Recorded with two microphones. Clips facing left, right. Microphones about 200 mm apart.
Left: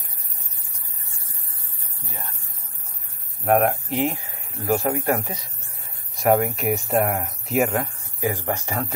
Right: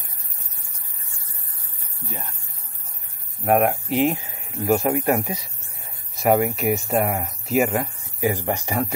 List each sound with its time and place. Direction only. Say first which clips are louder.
3.4 s speech: even; centre (ahead or behind)
3.9 s speech: right 4 dB; 20° right (ahead or behind)
6.1 s speech: even; 5° right (ahead or behind)